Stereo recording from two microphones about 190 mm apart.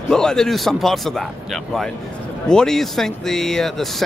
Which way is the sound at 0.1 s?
5° left (ahead or behind).